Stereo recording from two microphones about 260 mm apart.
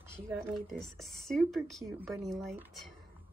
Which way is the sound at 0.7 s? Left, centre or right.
Centre.